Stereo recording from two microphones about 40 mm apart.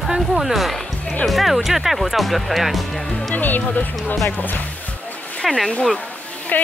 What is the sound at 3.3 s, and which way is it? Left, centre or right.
Speech, left.